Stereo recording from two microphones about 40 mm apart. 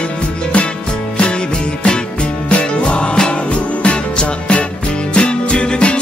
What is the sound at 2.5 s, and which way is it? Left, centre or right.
Music, left.